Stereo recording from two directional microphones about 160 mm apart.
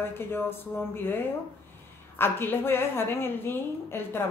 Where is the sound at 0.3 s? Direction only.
15° left (ahead or behind).